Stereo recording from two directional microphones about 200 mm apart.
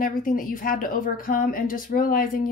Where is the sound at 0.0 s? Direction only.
45° left (ahead or behind).